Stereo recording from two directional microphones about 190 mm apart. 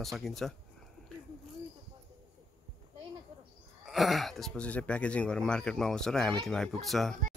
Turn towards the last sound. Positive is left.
turn(degrees=0)  # may be behind; listen again after turning